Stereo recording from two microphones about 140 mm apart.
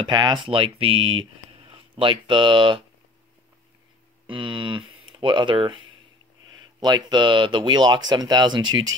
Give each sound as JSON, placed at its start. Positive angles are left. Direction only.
{"t": 0.0, "sound": "speech", "side_deg": -30}
{"t": 4.3, "sound": "speech", "side_deg": -35}
{"t": 6.8, "sound": "speech", "side_deg": -30}